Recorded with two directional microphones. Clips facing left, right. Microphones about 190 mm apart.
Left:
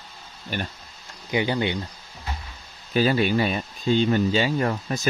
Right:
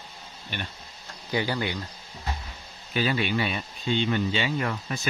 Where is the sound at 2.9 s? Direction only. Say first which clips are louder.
Left 6 dB; 40° left (ahead or behind).